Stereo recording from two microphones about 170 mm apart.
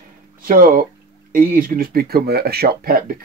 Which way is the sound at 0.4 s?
55° right (ahead or behind).